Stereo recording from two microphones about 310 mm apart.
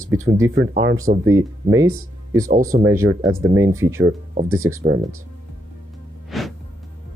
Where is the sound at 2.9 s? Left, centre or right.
Centre.